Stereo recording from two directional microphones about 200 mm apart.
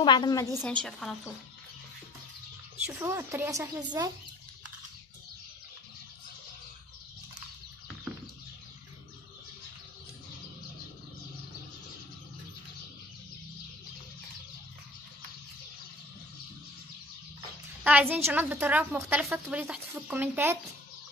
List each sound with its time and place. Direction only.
0.0 s a woman's voice: 20° left (ahead or behind)
0.8 s a woman's voice: centre (ahead or behind)
3.0 s a woman's voice: 15° right (ahead or behind)
17.8 s a woman's voice: 10° right (ahead or behind)